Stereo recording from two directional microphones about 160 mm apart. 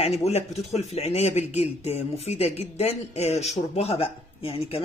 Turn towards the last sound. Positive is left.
turn(degrees=35)  # may be behind; listen again after turning